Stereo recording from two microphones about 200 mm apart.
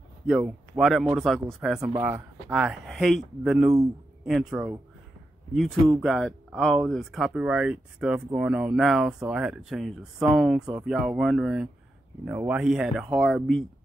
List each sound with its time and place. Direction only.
0.3 s speech: centre (ahead or behind)
1.9 s speech: 15° right (ahead or behind); by 13.7 s centre (ahead or behind)